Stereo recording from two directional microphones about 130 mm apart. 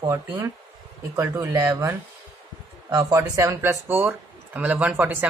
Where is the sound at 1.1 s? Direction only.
20° right (ahead or behind).